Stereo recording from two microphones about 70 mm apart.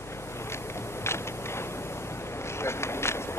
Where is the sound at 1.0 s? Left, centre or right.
Left.